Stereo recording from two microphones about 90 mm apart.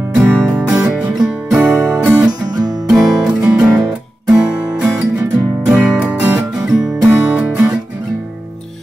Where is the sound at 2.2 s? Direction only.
45° right (ahead or behind).